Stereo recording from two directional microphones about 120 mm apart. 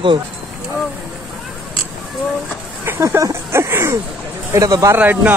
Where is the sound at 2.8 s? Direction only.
20° right (ahead or behind).